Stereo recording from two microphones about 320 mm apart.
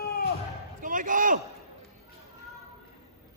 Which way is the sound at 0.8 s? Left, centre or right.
Right.